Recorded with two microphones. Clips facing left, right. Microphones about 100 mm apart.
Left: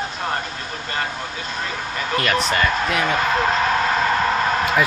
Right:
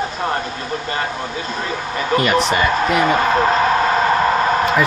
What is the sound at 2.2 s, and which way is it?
Speech, 5° right (ahead or behind).